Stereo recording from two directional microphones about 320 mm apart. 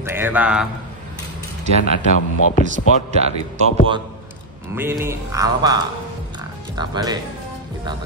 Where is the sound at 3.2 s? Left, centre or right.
Centre.